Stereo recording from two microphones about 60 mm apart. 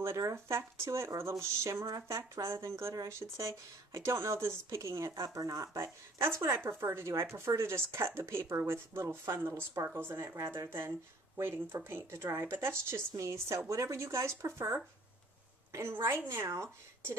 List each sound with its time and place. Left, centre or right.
0.2 s speech: right
6.2 s speech: right
10.3 s speech: right
13.1 s speech: right
15.9 s speech: right